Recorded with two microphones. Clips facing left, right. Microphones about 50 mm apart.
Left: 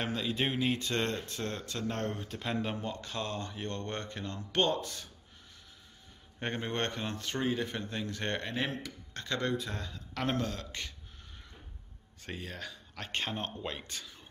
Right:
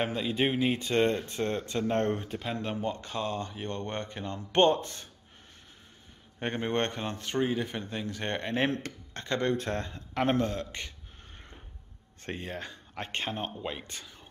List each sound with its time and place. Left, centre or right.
0.0 s speech: centre
2.3 s speech: centre
2.9 s speech: centre
4.5 s speech: right
6.4 s speech: centre
9.6 s speech: right
12.4 s speech: right
13.3 s speech: centre
13.8 s speech: right